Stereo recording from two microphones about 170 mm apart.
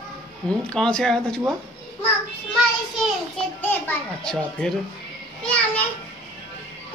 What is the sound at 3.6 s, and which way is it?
A child's voice, 10° left (ahead or behind).